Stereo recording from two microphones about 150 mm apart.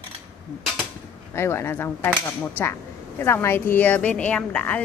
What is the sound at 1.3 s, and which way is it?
Speech, 15° left (ahead or behind).